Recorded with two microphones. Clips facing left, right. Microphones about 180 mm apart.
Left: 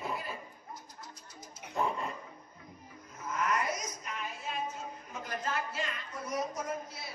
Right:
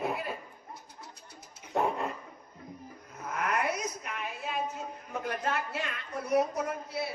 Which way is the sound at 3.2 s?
60° right (ahead or behind).